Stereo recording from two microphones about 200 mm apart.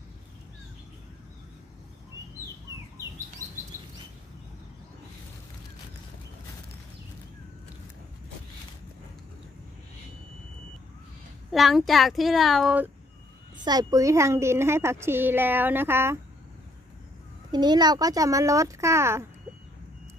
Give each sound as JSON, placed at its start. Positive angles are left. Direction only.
{"t": 11.5, "sound": "speech", "side_deg": 0}
{"t": 13.7, "sound": "a woman's voice", "side_deg": -20}
{"t": 17.5, "sound": "a woman's voice", "side_deg": -20}